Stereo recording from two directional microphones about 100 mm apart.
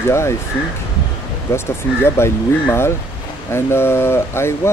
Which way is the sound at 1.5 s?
25° left (ahead or behind).